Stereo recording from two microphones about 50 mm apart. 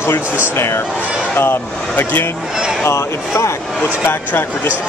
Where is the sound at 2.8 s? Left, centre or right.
Left.